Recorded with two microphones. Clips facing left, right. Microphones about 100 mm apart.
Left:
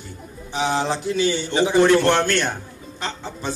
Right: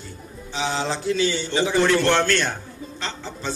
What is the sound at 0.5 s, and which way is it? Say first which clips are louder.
A man's voice: left 3 dB; 15° left (ahead or behind).